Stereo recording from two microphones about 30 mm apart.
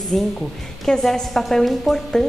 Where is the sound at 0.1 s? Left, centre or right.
Centre.